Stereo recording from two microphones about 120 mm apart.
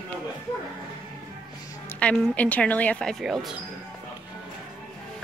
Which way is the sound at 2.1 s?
5° left (ahead or behind).